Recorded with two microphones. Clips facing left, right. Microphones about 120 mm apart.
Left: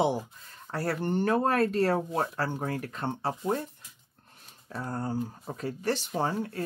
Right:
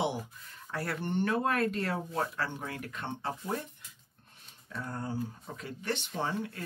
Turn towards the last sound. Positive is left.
turn(degrees=40)  # may be behind; listen again after turning